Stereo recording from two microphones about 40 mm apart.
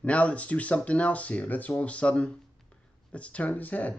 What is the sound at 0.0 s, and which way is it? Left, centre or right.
Speech, left.